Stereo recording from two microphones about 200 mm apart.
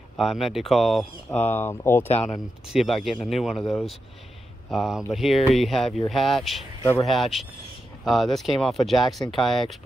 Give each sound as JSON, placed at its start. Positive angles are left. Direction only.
{"t": 0.2, "sound": "speech", "side_deg": 0}
{"t": 2.3, "sound": "speech", "side_deg": 0}
{"t": 6.8, "sound": "speech", "side_deg": 15}
{"t": 7.1, "sound": "speech", "side_deg": 0}